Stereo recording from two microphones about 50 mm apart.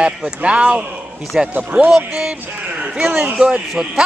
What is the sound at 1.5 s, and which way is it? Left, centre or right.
Speech, right.